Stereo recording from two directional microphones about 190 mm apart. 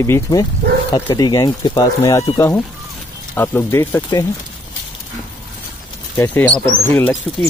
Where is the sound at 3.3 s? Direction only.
10° left (ahead or behind).